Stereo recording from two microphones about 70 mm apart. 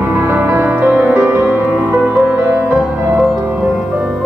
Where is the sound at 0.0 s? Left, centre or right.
Right.